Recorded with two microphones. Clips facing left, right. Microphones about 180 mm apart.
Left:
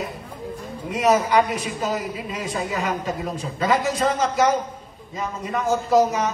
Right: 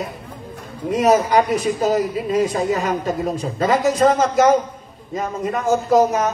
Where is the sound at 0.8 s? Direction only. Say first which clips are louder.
Right 4 dB; 40° right (ahead or behind).